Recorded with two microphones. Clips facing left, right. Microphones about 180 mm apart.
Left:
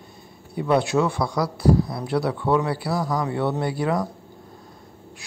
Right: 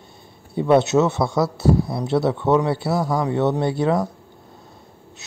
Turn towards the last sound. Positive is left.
turn(degrees=-25)  # may be behind; listen again after turning